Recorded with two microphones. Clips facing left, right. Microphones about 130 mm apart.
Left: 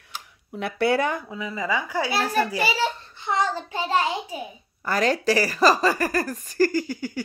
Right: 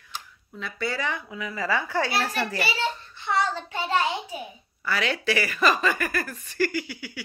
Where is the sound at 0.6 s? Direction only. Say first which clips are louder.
Left 8 dB; 65° left (ahead or behind).